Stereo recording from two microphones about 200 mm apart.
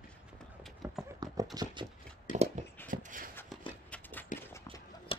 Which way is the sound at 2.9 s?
40° right (ahead or behind).